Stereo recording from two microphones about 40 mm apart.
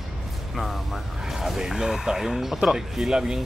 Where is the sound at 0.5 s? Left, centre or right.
Centre.